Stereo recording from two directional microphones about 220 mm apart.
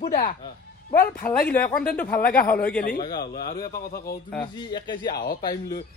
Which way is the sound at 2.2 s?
40° left (ahead or behind).